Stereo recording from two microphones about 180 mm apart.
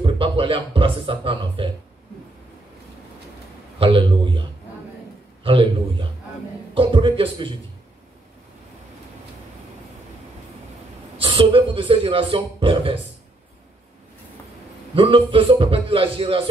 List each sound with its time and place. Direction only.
0.0 s speech: 30° right (ahead or behind)
3.8 s a man's voice: 25° right (ahead or behind)
11.1 s a man's voice: 30° right (ahead or behind)
15.0 s a man's voice: 30° right (ahead or behind)